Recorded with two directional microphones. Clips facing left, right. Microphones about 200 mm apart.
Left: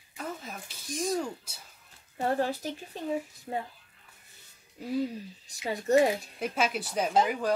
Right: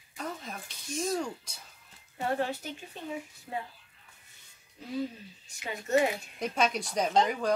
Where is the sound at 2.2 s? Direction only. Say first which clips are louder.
Left 3 dB; 35° left (ahead or behind).